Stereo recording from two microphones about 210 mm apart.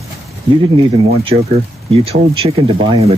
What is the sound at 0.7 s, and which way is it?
Speech, 25° right (ahead or behind).